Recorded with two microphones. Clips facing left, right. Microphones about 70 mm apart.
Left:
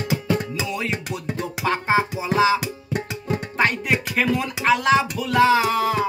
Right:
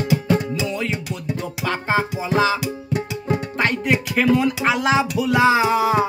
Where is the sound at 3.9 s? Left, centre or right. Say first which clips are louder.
Right 4 dB; centre.